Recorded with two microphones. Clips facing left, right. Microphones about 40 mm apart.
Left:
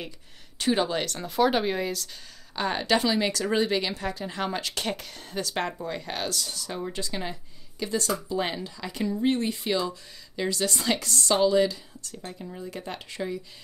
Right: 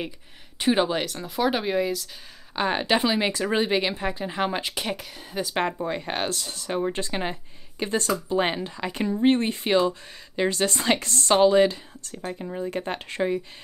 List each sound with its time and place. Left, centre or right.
0.6 s speech: centre
0.9 s speech: centre
2.5 s speech: right
4.7 s a woman's voice: centre
5.6 s speech: right